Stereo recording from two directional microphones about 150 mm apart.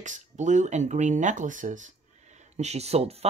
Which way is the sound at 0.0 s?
55° right (ahead or behind).